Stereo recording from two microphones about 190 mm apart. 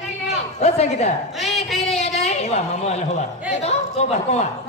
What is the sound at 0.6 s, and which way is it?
Speech, 35° left (ahead or behind).